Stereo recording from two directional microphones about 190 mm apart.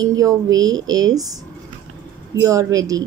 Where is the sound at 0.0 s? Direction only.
15° right (ahead or behind).